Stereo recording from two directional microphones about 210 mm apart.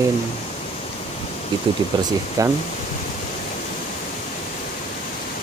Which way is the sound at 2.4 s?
15° right (ahead or behind).